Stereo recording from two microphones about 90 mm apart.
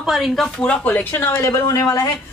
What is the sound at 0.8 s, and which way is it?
Speech, 20° left (ahead or behind).